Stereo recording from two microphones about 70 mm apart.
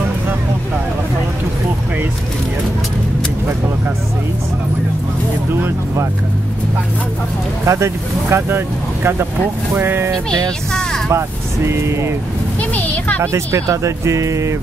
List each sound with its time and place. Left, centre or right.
7.6 s speech: right
10.7 s vehicle: centre
11.1 s speech: right
12.7 s a sound: left
13.2 s speech: right